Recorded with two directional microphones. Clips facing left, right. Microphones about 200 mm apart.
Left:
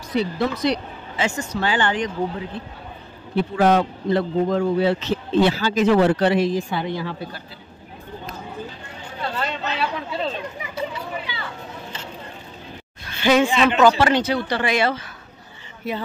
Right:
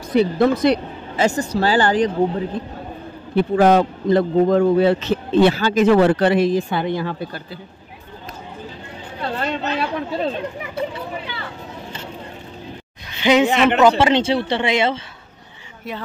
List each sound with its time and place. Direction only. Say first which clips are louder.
0.1 s a man's voice: right 7 dB; 50° right (ahead or behind)
9.4 s a man's voice: right 3 dB; 50° right (ahead or behind)
13.1 s a sound: right 2 dB; 20° right (ahead or behind)
13.7 s speech: right 1 dB; 20° right (ahead or behind)
15.8 s speech: left 3 dB; centre (ahead or behind)